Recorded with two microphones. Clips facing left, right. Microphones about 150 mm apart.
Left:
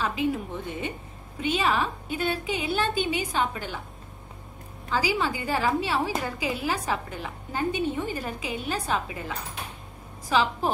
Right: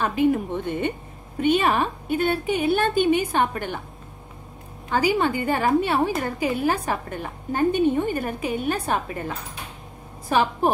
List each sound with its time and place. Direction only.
0.0 s a woman's voice: 55° right (ahead or behind)
4.9 s a woman's voice: 55° right (ahead or behind)
10.3 s a woman's voice: 55° right (ahead or behind)